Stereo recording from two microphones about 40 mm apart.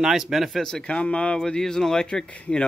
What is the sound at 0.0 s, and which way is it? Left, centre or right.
Speech, centre.